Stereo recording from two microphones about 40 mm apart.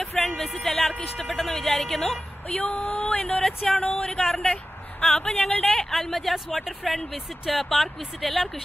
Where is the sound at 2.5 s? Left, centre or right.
Left.